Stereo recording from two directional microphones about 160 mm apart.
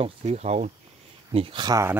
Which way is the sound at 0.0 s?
40° right (ahead or behind).